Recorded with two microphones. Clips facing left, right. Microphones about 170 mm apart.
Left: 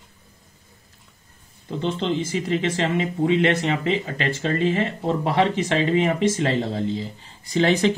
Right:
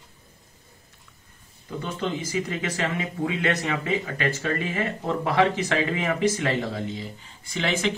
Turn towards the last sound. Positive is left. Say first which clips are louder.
# left 7 dB
turn(degrees=35)  # may be behind; listen again after turning